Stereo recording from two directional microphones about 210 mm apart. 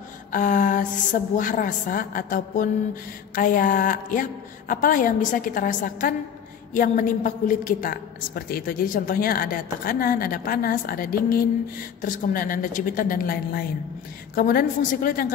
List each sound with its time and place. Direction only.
0.3 s a woman's voice: 40° left (ahead or behind)